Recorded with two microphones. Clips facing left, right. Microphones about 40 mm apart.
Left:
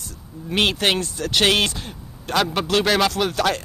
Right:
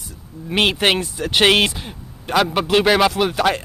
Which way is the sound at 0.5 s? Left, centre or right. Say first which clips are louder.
Right 3 dB; centre.